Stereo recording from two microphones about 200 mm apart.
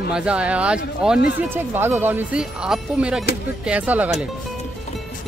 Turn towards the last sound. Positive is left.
turn(degrees=-5)  # may be behind; listen again after turning